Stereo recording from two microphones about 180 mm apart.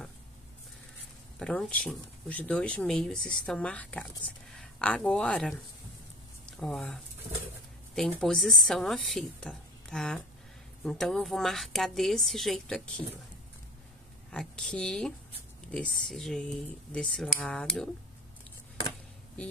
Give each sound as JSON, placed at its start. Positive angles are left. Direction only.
{"t": 1.4, "sound": "speech", "side_deg": 5}
{"t": 14.3, "sound": "speech", "side_deg": 5}